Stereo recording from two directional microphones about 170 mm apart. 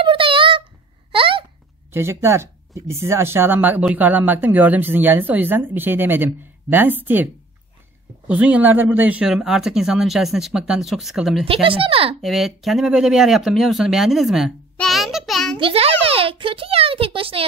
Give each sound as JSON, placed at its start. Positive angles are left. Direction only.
{"t": 0.0, "sound": "a sound", "side_deg": -30}
{"t": 1.9, "sound": "speech", "side_deg": -15}
{"t": 8.3, "sound": "speech", "side_deg": -10}
{"t": 11.4, "sound": "a child's voice", "side_deg": -30}
{"t": 12.2, "sound": "speech", "side_deg": 0}
{"t": 15.6, "sound": "a child's voice", "side_deg": -35}